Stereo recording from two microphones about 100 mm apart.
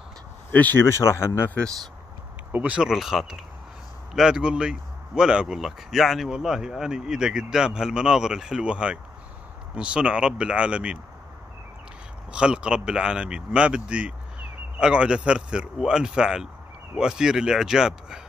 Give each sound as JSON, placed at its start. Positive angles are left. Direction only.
{"t": 0.5, "sound": "speech", "side_deg": 20}
{"t": 2.5, "sound": "speech", "side_deg": -15}
{"t": 12.3, "sound": "speech", "side_deg": -10}